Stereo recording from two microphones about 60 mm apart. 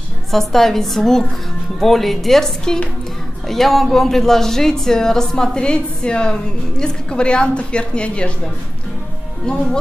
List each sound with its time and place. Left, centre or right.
0.3 s a woman's voice: centre
9.5 s speech: centre